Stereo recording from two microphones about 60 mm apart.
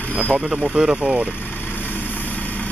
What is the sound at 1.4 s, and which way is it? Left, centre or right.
Vehicle, left.